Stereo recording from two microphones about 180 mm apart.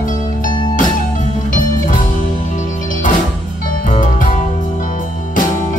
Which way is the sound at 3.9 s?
45° left (ahead or behind).